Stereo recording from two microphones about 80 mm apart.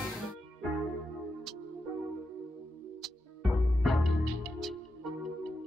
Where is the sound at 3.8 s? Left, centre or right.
Centre.